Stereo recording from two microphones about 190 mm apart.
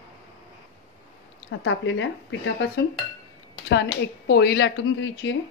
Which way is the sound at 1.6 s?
80° left.